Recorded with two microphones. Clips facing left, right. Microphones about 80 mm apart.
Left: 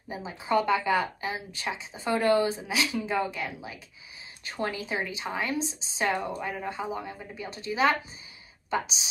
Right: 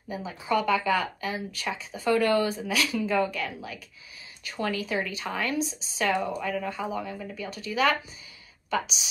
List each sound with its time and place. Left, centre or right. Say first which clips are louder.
0.1 s speech: even; left